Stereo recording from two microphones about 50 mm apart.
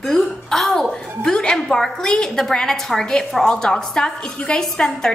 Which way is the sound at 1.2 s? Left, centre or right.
Centre.